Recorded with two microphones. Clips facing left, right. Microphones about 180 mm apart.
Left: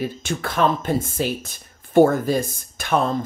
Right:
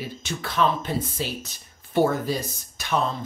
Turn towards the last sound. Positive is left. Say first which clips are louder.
# left 5 dB
turn(degrees=50)  # may be behind; listen again after turning